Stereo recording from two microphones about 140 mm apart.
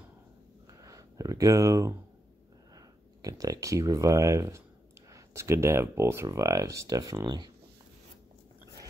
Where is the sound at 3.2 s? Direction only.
25° right (ahead or behind).